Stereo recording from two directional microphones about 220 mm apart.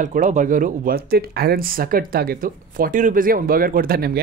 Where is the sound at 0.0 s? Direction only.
35° right (ahead or behind).